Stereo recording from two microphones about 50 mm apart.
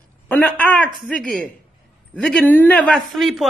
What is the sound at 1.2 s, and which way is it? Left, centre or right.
Speech, centre.